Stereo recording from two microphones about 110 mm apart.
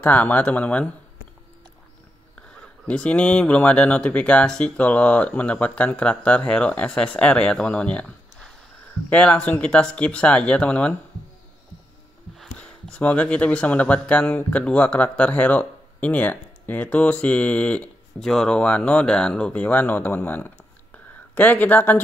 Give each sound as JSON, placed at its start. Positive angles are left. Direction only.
{"t": 0.0, "sound": "speech", "side_deg": 15}
{"t": 2.3, "sound": "speech", "side_deg": 10}
{"t": 12.5, "sound": "speech", "side_deg": 10}